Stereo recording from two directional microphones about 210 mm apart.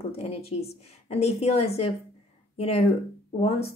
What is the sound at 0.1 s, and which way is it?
Speech, 30° left (ahead or behind).